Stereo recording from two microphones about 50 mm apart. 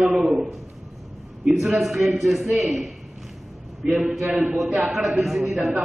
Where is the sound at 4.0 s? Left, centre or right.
Centre.